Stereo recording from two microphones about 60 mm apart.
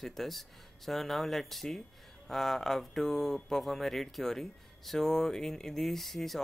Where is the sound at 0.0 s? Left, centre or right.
Centre.